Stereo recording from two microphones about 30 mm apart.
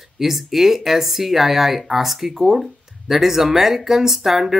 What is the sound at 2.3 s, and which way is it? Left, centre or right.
Speech, centre.